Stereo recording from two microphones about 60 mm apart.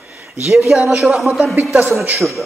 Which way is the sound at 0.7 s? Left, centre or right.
Centre.